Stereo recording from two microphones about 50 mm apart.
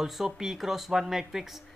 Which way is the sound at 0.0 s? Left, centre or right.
Centre.